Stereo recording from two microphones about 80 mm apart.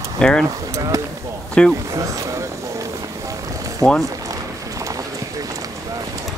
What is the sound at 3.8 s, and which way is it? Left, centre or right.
Speech, right.